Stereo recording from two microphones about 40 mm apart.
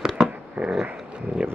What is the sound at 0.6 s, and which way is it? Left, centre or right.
Dog, right.